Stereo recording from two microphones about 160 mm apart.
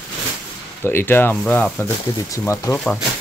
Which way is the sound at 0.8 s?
15° left (ahead or behind).